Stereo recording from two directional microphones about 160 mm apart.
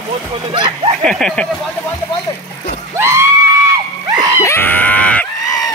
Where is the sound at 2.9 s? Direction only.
15° right (ahead or behind).